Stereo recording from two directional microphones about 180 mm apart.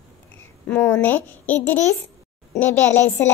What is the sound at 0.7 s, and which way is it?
A woman's voice, 10° left (ahead or behind).